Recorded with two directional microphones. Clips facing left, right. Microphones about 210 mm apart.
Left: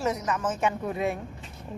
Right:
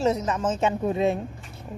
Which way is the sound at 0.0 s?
25° right (ahead or behind).